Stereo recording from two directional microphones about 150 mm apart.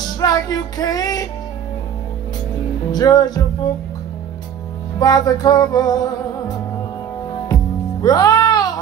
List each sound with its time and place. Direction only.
0.2 s music: 25° left (ahead or behind)
2.9 s music: 25° left (ahead or behind)
4.9 s music: 25° left (ahead or behind)
8.0 s music: 25° left (ahead or behind)